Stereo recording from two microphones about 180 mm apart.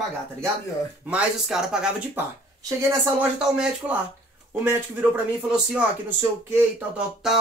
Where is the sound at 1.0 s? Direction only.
5° right (ahead or behind).